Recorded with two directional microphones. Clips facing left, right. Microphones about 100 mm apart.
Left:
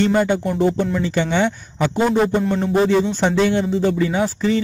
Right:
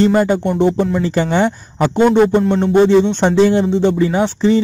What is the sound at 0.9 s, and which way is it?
Speech, 40° right (ahead or behind).